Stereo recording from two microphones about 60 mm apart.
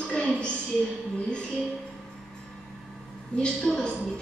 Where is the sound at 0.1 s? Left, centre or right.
Centre.